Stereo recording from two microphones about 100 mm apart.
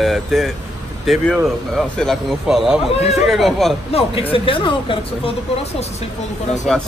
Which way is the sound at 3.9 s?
80° left.